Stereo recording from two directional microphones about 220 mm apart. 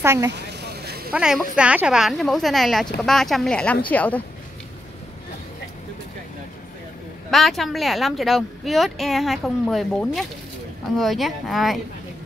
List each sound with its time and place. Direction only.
0.0 s speech: 10° right (ahead or behind)
0.3 s vehicle: 50° right (ahead or behind)
1.1 s speech: 5° right (ahead or behind)
7.2 s speech: centre (ahead or behind)